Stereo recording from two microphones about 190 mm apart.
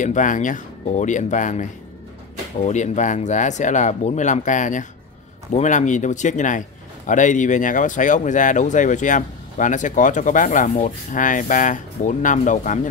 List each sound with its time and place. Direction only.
0.0 s speech: 40° left (ahead or behind)